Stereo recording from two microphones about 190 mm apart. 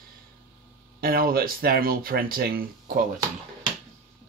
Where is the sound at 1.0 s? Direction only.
50° right (ahead or behind).